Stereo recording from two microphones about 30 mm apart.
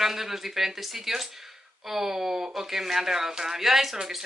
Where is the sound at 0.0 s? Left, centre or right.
Centre.